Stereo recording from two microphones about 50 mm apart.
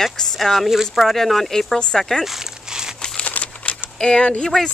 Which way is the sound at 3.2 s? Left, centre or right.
Left.